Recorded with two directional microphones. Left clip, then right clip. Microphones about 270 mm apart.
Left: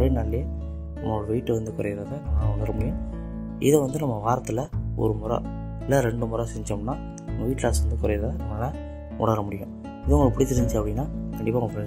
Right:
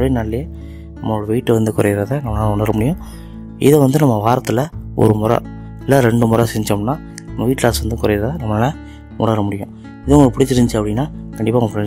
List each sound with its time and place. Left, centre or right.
0.0 s speech: right